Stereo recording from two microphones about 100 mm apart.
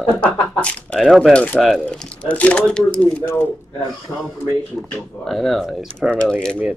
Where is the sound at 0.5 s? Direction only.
10° left (ahead or behind).